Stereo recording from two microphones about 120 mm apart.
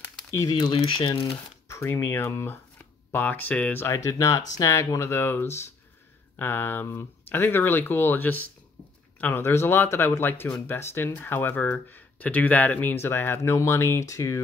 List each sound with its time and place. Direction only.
0.3 s speech: 25° left (ahead or behind)
0.6 s speech: 40° left (ahead or behind)
1.7 s speech: 20° left (ahead or behind)